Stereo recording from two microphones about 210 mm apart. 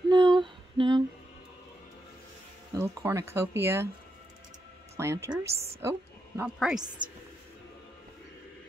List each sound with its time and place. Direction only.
0.1 s a sound: 20° right (ahead or behind)
2.7 s speech: 10° right (ahead or behind)
4.9 s a woman's voice: 15° right (ahead or behind)